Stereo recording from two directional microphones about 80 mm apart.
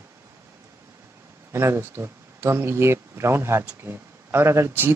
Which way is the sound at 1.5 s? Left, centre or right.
Right.